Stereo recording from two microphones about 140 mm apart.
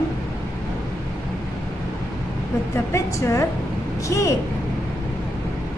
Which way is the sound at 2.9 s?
20° left (ahead or behind).